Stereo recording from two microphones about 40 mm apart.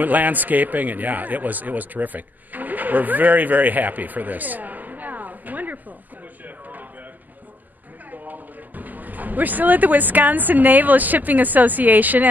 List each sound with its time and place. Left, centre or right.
0.0 s a man's voice: right
6.4 s a sound: right
8.1 s speech: right